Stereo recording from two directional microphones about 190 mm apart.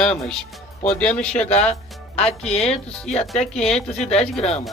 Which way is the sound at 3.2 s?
5° left (ahead or behind).